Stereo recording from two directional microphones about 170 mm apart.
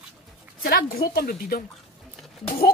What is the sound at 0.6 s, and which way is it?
A woman's voice, 65° left (ahead or behind).